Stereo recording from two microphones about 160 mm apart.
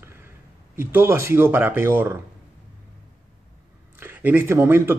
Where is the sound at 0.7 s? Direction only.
15° right (ahead or behind).